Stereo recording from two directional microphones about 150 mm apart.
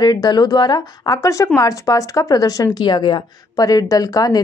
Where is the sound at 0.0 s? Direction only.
25° left (ahead or behind).